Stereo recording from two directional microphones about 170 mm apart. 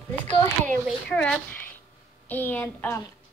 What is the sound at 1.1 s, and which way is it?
A woman's voice, 5° left (ahead or behind).